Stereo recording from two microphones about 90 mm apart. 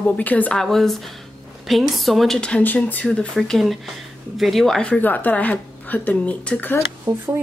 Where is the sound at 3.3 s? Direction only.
Centre (ahead or behind).